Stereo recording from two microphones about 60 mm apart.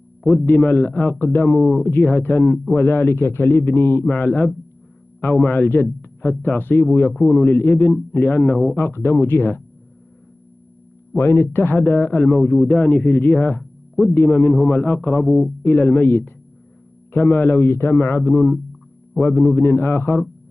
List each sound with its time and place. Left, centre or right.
0.6 s a man's voice: left
4.1 s a man's voice: left
11.1 s a man's voice: left
15.2 s a man's voice: centre
15.6 s a man's voice: left